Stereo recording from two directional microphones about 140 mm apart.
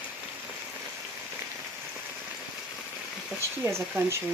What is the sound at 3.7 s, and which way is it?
Speech, 20° right (ahead or behind).